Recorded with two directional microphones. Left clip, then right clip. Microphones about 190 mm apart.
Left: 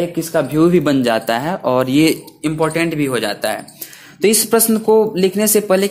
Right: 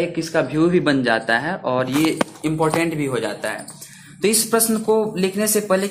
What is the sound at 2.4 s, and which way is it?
Speech, 25° left (ahead or behind).